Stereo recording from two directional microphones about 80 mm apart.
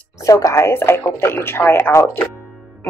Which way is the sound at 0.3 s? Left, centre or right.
Left.